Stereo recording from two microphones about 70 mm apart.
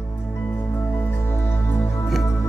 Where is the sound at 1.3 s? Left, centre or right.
Left.